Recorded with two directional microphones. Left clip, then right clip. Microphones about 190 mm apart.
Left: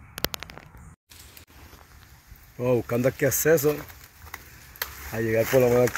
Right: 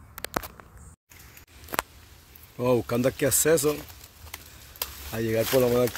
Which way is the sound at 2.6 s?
20° right (ahead or behind).